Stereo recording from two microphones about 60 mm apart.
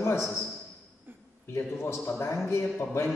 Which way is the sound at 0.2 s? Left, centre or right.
Centre.